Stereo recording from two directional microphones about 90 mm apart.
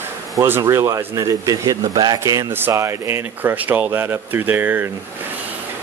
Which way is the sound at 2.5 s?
30° right (ahead or behind).